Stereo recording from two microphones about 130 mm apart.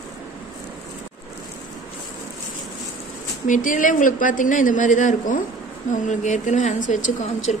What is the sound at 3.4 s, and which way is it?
A woman's voice, 85° left.